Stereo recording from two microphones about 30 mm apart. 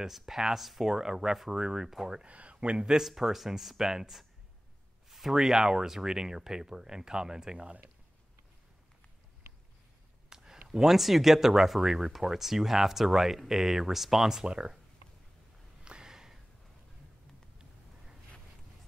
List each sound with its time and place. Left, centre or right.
0.0 s speech: centre
0.8 s speech: centre
2.2 s speech: right
2.8 s speech: right
3.2 s speech: centre
5.3 s speech: centre
10.3 s a sound: centre
10.9 s speech: centre
15.8 s a sound: right
16.1 s a sound: centre